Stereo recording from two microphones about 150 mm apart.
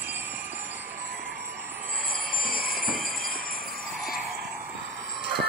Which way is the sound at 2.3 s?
80° left.